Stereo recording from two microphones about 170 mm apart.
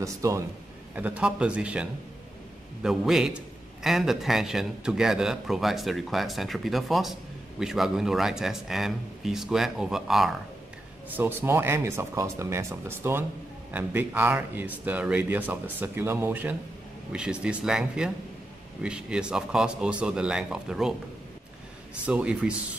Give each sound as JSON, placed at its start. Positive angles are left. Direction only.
{"t": 0.0, "sound": "a man's voice", "side_deg": -15}
{"t": 11.1, "sound": "a man's voice", "side_deg": -10}
{"t": 22.0, "sound": "speech", "side_deg": -5}